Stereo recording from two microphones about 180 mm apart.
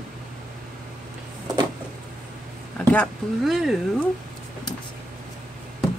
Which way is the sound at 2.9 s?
5° left (ahead or behind).